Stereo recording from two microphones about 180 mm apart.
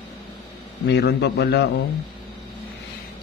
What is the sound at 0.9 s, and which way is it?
Speech, 70° left (ahead or behind).